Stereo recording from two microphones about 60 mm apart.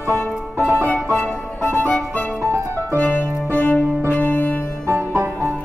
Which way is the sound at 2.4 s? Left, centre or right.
Right.